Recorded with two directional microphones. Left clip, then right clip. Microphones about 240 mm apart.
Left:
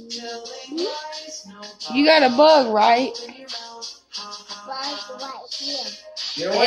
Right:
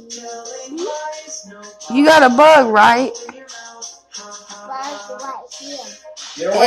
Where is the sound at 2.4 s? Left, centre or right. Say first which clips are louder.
Right 4 dB; right.